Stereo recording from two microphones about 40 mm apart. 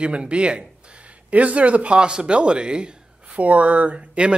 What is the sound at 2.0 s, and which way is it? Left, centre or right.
Speech, right.